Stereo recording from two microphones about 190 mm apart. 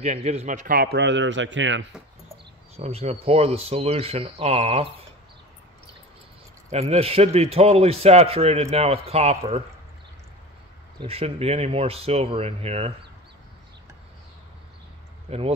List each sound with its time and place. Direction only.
0.0 s a man's voice: 35° right (ahead or behind); by 1.9 s 75° right (ahead or behind)
2.7 s a man's voice: 35° right (ahead or behind)
6.7 s a man's voice: 35° right (ahead or behind)
11.0 s a man's voice: 30° right (ahead or behind)
15.2 s speech: 30° right (ahead or behind)